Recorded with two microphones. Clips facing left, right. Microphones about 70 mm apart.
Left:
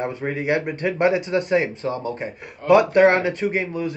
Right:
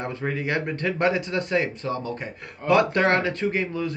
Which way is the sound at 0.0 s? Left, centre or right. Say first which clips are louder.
Left 3 dB; left.